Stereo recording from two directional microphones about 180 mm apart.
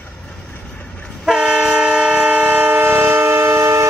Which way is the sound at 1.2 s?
5° right (ahead or behind).